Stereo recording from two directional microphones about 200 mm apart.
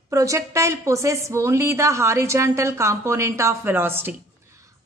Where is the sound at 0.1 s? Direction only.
15° right (ahead or behind).